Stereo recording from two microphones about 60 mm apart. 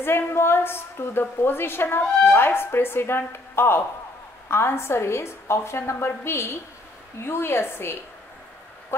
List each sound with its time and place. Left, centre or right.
0.0 s a woman's voice: left